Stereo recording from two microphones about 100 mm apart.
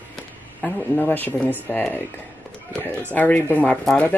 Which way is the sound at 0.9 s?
20° left (ahead or behind).